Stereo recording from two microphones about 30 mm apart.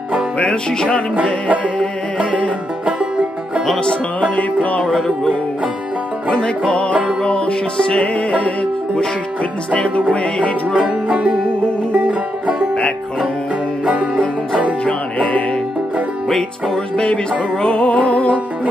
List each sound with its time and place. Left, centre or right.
0.4 s music: left
2.8 s music: right
6.3 s music: left
6.9 s music: right
7.2 s music: left
10.1 s music: left
10.7 s music: right
14.9 s music: left
16.3 s music: centre
16.9 s music: left
17.9 s music: left